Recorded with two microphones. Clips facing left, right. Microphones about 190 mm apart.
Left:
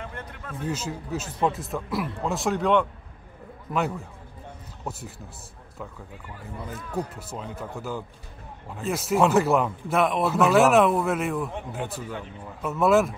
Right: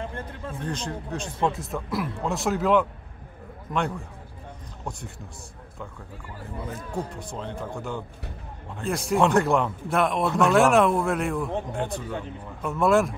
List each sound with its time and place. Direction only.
0.0 s a man's voice: 30° right (ahead or behind)
0.7 s a man's voice: 5° left (ahead or behind)
7.2 s a man's voice: 5° left (ahead or behind)